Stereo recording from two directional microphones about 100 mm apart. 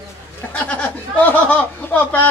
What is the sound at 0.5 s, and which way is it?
Speech, 15° left (ahead or behind).